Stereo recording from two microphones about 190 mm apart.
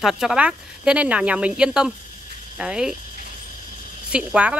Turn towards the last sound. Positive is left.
turn(degrees=-5)  # may be behind; listen again after turning